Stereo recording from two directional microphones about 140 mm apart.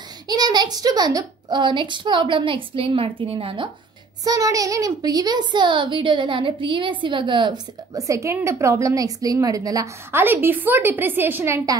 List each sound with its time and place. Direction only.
0.3 s a woman's voice: 30° right (ahead or behind)
4.2 s a child's voice: 25° right (ahead or behind)
10.2 s a woman's voice: 15° right (ahead or behind)